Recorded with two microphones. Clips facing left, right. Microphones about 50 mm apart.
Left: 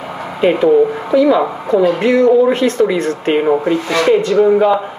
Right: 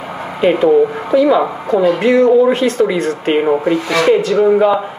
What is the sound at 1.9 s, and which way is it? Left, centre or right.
Speech, right.